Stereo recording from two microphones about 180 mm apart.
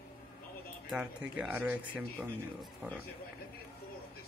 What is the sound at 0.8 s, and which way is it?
Speech, 5° right (ahead or behind).